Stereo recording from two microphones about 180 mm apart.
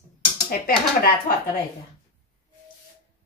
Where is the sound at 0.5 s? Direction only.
55° left (ahead or behind).